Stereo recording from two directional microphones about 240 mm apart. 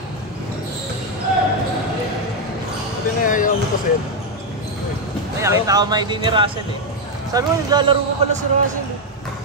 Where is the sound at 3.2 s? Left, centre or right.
Left.